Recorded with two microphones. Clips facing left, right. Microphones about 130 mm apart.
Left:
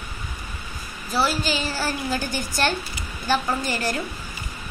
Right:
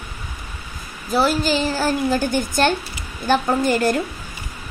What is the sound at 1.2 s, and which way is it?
A woman's voice, 45° right (ahead or behind).